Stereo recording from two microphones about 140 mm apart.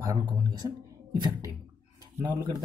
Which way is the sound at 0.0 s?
30° right (ahead or behind).